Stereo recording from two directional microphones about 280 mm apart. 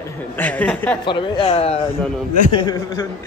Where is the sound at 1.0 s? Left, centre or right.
Centre.